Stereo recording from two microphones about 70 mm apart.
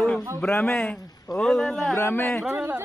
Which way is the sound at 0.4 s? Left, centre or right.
Centre.